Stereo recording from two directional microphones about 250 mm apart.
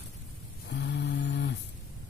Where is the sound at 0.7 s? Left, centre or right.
Left.